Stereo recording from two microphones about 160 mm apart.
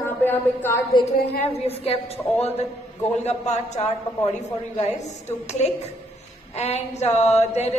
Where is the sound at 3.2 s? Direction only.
45° left (ahead or behind).